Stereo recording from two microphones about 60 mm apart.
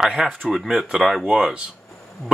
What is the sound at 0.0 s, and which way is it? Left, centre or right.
Speech, centre.